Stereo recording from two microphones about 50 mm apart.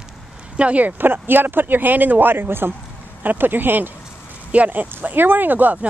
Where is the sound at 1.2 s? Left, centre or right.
Right.